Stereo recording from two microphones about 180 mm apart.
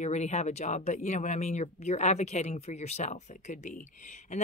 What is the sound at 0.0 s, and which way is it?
Speech, 40° left (ahead or behind).